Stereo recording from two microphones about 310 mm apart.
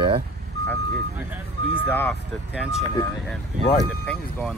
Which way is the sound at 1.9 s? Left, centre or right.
Centre.